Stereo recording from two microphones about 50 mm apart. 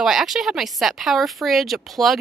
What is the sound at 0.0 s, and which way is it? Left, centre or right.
Speech, centre.